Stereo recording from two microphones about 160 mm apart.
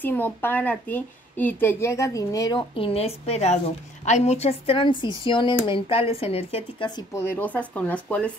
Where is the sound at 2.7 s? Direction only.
35° left (ahead or behind).